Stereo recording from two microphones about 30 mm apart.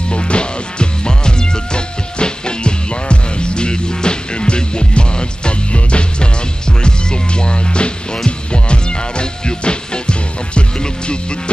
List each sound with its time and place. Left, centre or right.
0.1 s music: left